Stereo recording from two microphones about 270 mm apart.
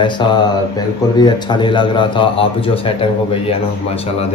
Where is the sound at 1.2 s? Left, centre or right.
Centre.